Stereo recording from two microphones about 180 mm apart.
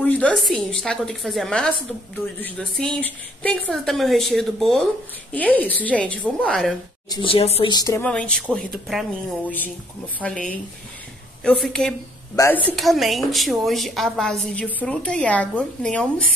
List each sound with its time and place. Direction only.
0.0 s a woman's voice: 5° left (ahead or behind)
7.1 s speech: 30° left (ahead or behind)
7.7 s speech: 20° left (ahead or behind)
8.0 s a woman's voice: 5° left (ahead or behind)
10.2 s a woman's voice: 5° left (ahead or behind)